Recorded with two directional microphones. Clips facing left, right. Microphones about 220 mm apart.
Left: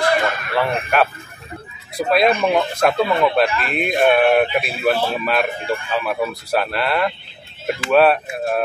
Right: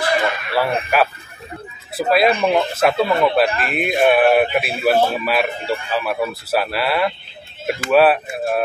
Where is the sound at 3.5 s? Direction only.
45° right (ahead or behind).